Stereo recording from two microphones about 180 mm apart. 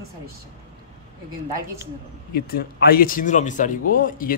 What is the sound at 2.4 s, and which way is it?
Speech, 55° left (ahead or behind).